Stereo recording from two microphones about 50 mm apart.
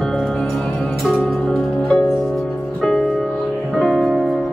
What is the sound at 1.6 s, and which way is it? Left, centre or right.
Music, left.